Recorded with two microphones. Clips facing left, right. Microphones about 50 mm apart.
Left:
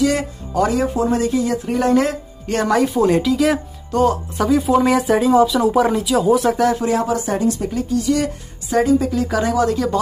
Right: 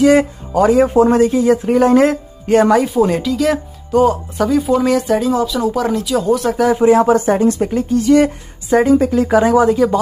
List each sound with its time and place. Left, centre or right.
0.0 s a man's voice: right
2.7 s speech: centre
6.8 s speech: right
7.1 s speech: right; by 9.9 s centre